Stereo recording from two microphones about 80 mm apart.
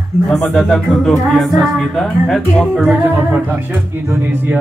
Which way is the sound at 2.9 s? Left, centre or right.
Right.